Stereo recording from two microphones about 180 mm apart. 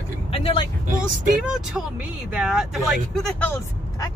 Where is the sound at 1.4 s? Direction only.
Centre (ahead or behind).